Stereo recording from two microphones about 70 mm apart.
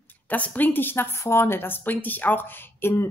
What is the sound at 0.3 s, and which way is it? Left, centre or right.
Speech, left.